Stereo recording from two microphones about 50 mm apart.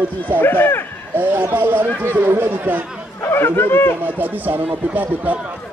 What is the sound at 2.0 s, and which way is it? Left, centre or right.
Speech, right.